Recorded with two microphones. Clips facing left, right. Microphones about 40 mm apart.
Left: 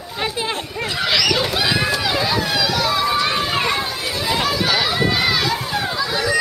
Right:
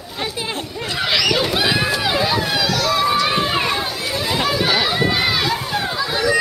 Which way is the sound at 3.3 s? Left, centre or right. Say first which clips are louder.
Right 1 dB; centre.